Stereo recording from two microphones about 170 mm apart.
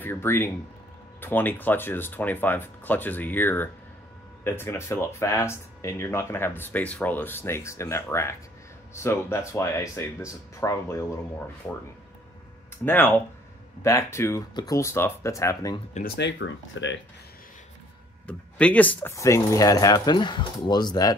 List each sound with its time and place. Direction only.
0.0 s speech: 15° left (ahead or behind)
12.8 s speech: 10° left (ahead or behind)
16.2 s speech: 90° left
18.2 s speech: 10° left (ahead or behind); by 21.2 s 25° left (ahead or behind)